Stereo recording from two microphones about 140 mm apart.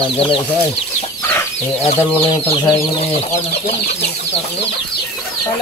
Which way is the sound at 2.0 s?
15° left (ahead or behind).